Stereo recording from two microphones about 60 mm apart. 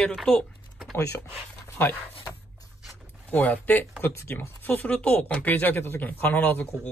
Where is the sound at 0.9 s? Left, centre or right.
Left.